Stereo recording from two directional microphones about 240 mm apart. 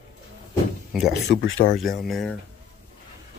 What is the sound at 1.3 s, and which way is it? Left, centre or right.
Speech, left.